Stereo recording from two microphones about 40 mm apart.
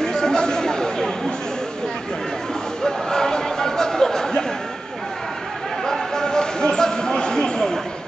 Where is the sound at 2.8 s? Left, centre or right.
Centre.